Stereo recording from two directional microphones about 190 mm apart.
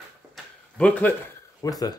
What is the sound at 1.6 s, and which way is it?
Speech, 20° left (ahead or behind).